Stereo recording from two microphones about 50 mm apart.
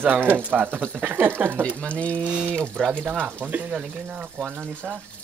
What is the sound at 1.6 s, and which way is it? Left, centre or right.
Speech, left.